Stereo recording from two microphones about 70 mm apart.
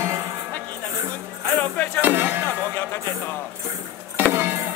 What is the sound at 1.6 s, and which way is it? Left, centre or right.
Music, centre.